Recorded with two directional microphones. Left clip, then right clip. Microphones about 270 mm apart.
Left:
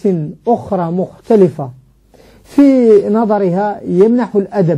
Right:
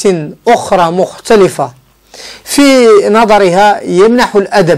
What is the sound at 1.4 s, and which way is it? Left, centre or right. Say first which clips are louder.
Speech: right 7 dB; centre.